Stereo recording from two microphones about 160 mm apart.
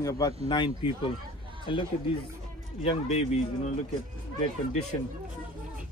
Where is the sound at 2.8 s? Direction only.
40° left (ahead or behind).